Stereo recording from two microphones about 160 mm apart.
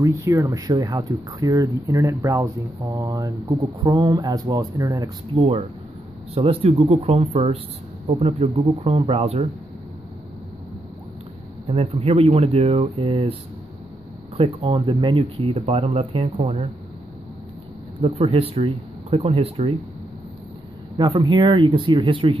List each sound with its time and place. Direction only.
0.0 s speech: 20° right (ahead or behind)
5.4 s speech: 40° right (ahead or behind)
11.6 s speech: 35° right (ahead or behind)
18.0 s speech: 40° right (ahead or behind)
21.0 s speech: 25° right (ahead or behind)